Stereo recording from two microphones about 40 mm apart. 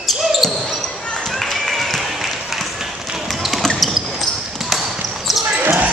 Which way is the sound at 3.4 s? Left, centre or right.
Centre.